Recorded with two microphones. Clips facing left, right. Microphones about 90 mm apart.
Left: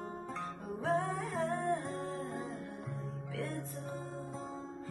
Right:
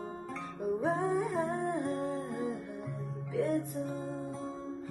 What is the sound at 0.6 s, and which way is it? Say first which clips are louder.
Music: right 4 dB; 20° right (ahead or behind).